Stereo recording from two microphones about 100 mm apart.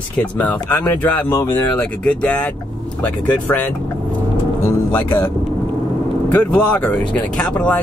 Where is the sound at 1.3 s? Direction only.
30° left (ahead or behind).